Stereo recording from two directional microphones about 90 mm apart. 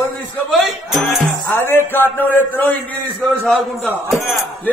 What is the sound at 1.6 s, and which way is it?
A man's voice, 25° left (ahead or behind).